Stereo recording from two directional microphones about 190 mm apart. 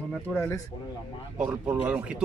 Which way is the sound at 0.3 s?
Centre (ahead or behind).